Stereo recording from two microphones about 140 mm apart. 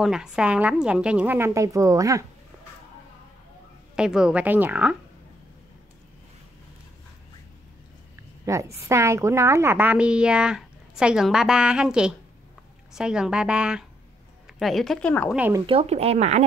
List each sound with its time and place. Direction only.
0.0 s a woman's voice: 5° right (ahead or behind); by 2.2 s 25° right (ahead or behind)
3.9 s a woman's voice: 5° right (ahead or behind)
8.5 s a woman's voice: 20° right (ahead or behind); by 15.2 s 5° left (ahead or behind)
15.6 s speech: 45° right (ahead or behind)